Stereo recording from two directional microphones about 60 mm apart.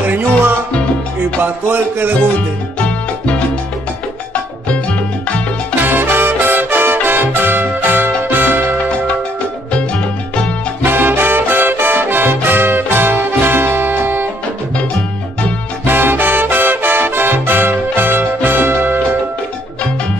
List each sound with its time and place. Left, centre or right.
0.0 s music: right
2.8 s salsa music: left
5.8 s music: right
10.8 s music: right
15.8 s music: right